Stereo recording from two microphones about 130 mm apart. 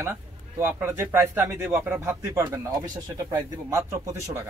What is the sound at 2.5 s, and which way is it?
Speech, 30° right (ahead or behind).